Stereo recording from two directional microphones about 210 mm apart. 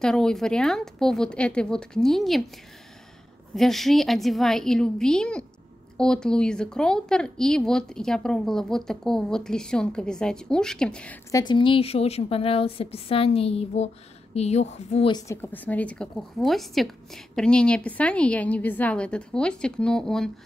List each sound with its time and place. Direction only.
0.0 s a woman's voice: 5° left (ahead or behind)
3.5 s a woman's voice: centre (ahead or behind)
11.3 s a woman's voice: 20° left (ahead or behind); by 20.2 s 5° left (ahead or behind)